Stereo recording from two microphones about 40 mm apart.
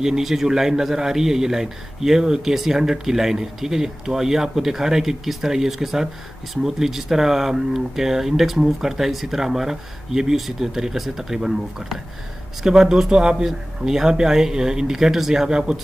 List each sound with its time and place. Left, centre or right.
0.0 s a man's voice: centre